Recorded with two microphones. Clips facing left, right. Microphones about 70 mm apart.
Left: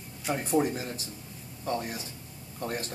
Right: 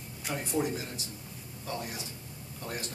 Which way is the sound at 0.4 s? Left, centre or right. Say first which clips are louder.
Left 4 dB; left.